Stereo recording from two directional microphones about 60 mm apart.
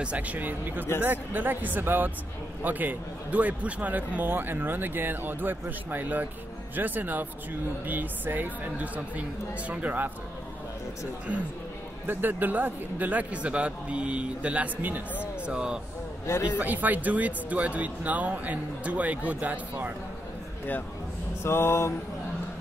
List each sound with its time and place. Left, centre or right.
0.0 s speech: right
12.1 s speech: right
15.4 s speech: centre
16.5 s speech: right
21.4 s a sound: left